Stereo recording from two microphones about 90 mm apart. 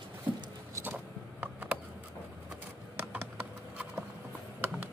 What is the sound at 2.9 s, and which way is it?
Computer keyboard, 20° right (ahead or behind).